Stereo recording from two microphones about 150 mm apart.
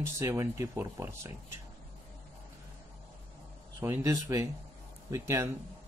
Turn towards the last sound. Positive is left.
turn(degrees=-20)  # may be behind; listen again after turning